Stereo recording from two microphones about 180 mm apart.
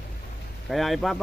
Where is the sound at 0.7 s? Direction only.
Centre (ahead or behind).